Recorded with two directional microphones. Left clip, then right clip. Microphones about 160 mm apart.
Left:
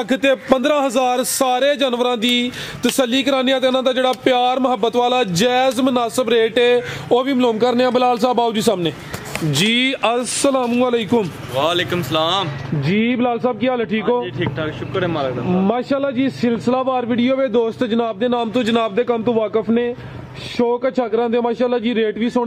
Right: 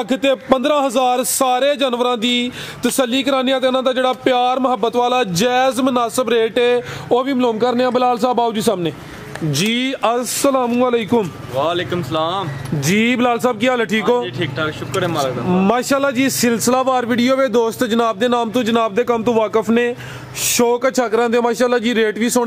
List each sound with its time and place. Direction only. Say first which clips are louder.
0.1 s a man's voice: even; centre (ahead or behind)
12.8 s a man's voice: right 3 dB; 15° right (ahead or behind)
14.0 s a man's voice: right 2 dB; 5° right (ahead or behind)
15.6 s a man's voice: right 4 dB; 15° right (ahead or behind)